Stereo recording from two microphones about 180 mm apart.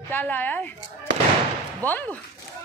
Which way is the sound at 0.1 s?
10° left (ahead or behind).